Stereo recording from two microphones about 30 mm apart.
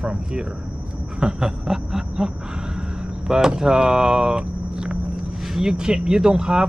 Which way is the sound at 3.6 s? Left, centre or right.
Right.